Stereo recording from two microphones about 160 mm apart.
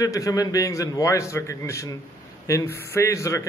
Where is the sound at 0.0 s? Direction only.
20° left (ahead or behind).